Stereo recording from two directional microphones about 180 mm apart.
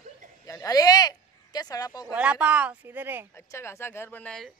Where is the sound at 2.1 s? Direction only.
5° right (ahead or behind).